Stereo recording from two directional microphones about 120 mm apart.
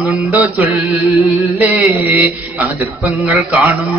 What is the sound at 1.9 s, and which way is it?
A man's voice, 15° right (ahead or behind).